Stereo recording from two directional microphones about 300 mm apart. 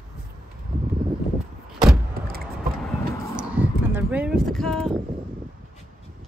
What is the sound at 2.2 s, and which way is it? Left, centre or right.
Vehicle, right.